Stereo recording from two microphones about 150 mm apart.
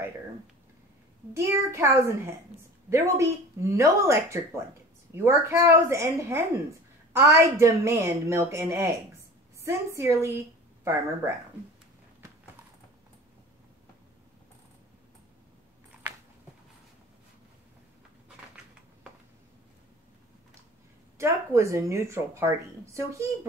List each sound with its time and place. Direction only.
1.3 s a woman's voice: 20° right (ahead or behind)
21.2 s a woman's voice: 20° right (ahead or behind)